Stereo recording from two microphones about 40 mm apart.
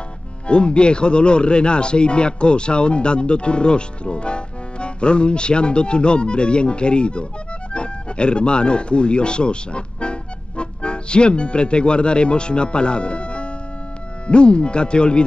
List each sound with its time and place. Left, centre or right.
0.5 s speech: left